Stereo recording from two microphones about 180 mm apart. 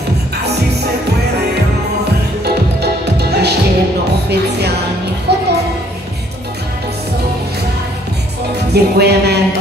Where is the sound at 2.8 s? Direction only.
65° right (ahead or behind).